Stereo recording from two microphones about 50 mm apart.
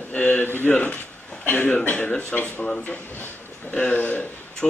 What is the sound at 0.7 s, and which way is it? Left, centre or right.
A man's voice, left.